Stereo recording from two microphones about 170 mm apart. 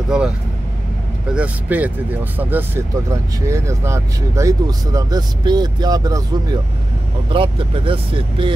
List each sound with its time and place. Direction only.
0.1 s speech: 5° right (ahead or behind)
1.3 s speech: 10° right (ahead or behind); by 8.5 s 30° right (ahead or behind)